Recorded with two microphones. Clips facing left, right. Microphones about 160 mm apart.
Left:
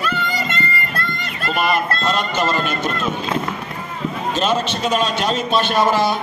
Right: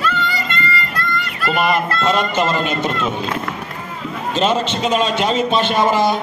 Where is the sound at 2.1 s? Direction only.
20° right (ahead or behind).